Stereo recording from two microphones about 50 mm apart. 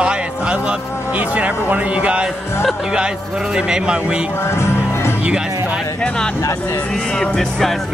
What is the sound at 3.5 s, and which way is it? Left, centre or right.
Speech, centre.